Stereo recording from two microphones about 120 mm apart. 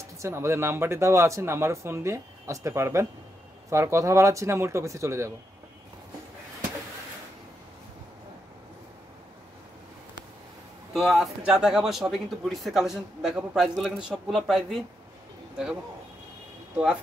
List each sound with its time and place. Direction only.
0.0 s a man's voice: 25° right (ahead or behind)
10.9 s a man's voice: centre (ahead or behind)
16.7 s speech: 10° right (ahead or behind)